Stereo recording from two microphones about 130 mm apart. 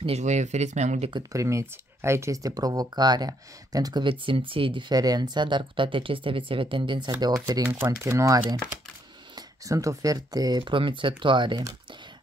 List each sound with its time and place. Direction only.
0.0 s speech: 55° right (ahead or behind)
1.3 s speech: 25° right (ahead or behind)